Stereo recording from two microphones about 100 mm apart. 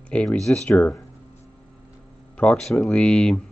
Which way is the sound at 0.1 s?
10° left (ahead or behind).